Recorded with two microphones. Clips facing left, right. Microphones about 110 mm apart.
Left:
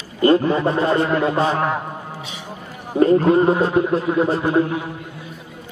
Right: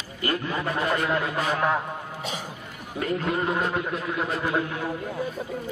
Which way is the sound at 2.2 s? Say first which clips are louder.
Right 1 dB; 45° right (ahead or behind).